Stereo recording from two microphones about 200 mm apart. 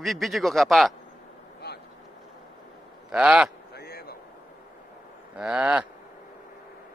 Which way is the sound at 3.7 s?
50° left (ahead or behind).